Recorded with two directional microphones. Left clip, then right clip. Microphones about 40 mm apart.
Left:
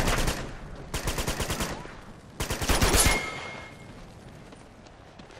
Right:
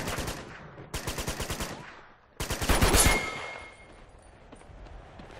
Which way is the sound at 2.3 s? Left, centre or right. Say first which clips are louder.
Left 2 dB; centre.